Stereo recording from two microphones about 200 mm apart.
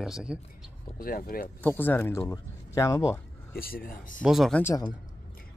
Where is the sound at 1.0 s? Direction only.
45° left (ahead or behind).